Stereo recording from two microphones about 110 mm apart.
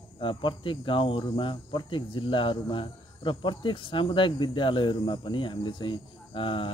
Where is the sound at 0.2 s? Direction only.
50° left (ahead or behind).